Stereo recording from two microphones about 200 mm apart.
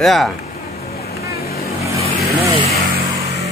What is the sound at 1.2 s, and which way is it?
Vehicle, 50° left (ahead or behind).